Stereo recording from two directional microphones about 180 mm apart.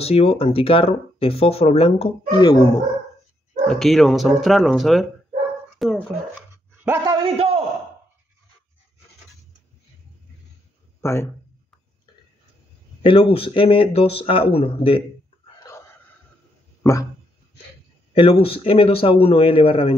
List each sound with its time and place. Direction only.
0.0 s speech: 30° left (ahead or behind)
3.6 s speech: centre (ahead or behind)
6.5 s a sound: 15° right (ahead or behind)
7.3 s a sound: 35° right (ahead or behind)
11.0 s speech: 15° left (ahead or behind)
13.0 s speech: 30° left (ahead or behind)
18.1 s speech: 30° left (ahead or behind)